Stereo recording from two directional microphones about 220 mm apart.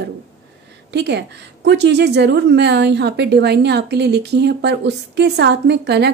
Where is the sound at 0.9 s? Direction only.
50° right (ahead or behind).